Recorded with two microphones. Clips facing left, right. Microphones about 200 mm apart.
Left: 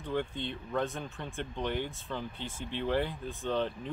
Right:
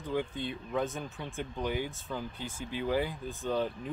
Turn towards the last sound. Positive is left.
turn(degrees=-5)  # may be behind; listen again after turning